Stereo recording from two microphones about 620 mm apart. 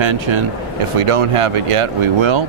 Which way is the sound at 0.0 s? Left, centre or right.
Right.